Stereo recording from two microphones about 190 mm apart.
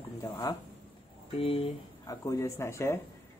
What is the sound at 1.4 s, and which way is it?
Speech, 30° left (ahead or behind).